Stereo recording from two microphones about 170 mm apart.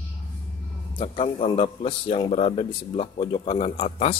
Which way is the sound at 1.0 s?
35° left (ahead or behind).